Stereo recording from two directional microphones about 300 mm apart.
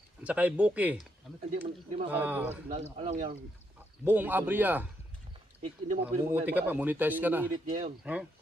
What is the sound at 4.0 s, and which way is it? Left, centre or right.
Speech, centre.